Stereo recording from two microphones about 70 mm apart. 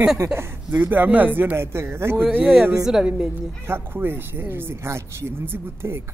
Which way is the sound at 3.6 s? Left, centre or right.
Right.